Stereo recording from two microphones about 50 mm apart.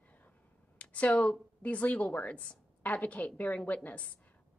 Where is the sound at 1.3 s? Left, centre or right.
Left.